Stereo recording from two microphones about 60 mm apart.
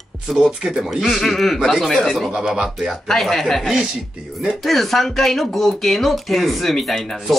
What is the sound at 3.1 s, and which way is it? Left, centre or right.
Speech, centre.